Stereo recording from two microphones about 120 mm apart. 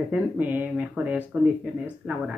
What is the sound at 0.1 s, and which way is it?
Speech, 15° right (ahead or behind).